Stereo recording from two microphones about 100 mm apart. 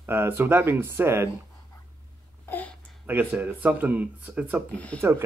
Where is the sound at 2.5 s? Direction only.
15° left (ahead or behind).